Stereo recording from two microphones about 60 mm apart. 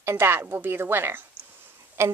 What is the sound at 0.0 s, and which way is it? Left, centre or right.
Speech, right.